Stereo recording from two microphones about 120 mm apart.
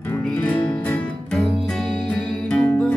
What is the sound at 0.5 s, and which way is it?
Music, 5° left (ahead or behind).